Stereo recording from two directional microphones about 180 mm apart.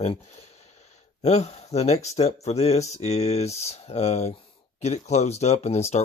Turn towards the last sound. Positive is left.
turn(degrees=35)  # may be behind; listen again after turning